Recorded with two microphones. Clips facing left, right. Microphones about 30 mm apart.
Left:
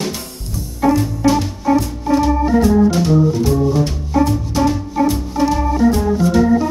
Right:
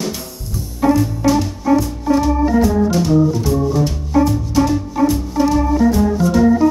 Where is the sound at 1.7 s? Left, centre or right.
Centre.